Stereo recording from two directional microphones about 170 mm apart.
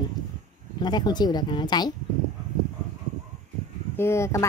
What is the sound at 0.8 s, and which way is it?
Speech, 25° left (ahead or behind).